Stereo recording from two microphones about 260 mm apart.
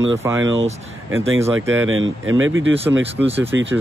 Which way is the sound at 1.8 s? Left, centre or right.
Right.